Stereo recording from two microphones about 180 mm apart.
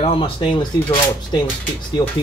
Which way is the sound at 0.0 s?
30° left (ahead or behind).